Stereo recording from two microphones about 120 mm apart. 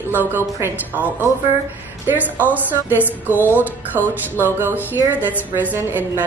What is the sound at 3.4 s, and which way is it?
Speech, 15° left (ahead or behind).